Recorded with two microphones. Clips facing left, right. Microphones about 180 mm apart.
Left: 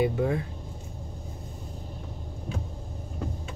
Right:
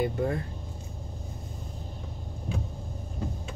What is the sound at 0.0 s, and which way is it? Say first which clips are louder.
Speech: left 3 dB; 5° left (ahead or behind).